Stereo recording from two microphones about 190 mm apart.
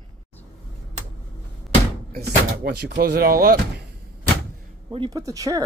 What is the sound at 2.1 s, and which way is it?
Speech, 55° right (ahead or behind).